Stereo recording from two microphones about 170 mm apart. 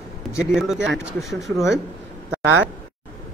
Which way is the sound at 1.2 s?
20° left (ahead or behind).